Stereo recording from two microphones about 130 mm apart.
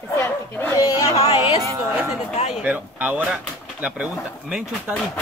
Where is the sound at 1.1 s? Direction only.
45° left (ahead or behind).